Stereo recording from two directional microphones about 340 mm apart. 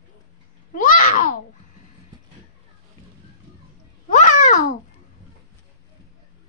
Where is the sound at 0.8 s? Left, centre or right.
Left.